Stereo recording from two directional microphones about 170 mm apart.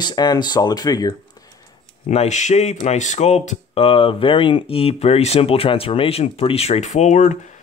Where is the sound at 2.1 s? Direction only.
40° left (ahead or behind).